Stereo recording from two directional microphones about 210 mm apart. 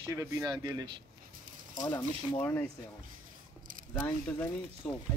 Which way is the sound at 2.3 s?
10° left (ahead or behind).